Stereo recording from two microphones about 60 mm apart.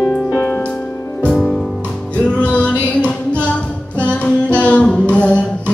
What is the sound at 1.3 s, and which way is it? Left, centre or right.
Music, centre.